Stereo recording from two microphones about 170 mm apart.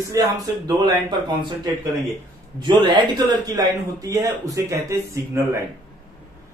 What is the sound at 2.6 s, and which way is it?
A man's voice, 25° right (ahead or behind).